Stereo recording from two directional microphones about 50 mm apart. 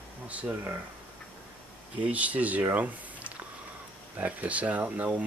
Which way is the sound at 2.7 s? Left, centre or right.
Right.